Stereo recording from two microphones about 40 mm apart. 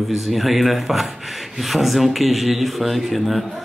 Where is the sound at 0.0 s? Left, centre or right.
Centre.